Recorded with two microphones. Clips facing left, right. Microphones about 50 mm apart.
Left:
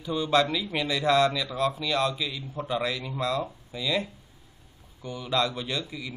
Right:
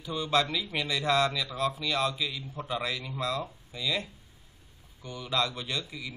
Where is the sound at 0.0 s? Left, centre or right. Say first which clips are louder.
Left 4 dB; centre.